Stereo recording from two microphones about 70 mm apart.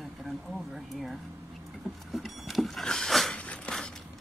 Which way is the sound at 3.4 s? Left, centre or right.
Centre.